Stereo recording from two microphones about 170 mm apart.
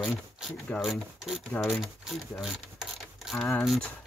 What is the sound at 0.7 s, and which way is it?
Speech, centre (ahead or behind).